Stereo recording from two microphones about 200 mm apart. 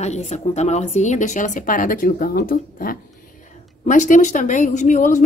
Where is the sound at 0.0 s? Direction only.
35° left (ahead or behind).